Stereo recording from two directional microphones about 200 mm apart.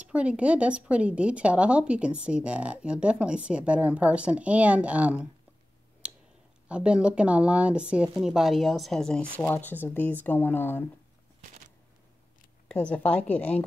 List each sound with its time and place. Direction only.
0.0 s speech: 5° right (ahead or behind)
6.7 s speech: 5° right (ahead or behind); by 10.9 s 10° left (ahead or behind)
12.6 s speech: 5° left (ahead or behind)